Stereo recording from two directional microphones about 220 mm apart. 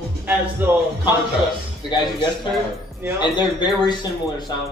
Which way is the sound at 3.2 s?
20° left (ahead or behind).